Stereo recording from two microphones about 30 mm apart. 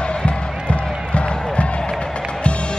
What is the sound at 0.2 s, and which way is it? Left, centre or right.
Music, left.